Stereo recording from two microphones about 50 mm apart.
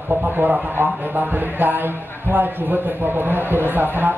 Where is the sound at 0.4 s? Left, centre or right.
Right.